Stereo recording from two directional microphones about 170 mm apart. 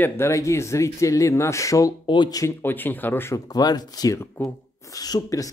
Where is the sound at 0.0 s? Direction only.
15° left (ahead or behind).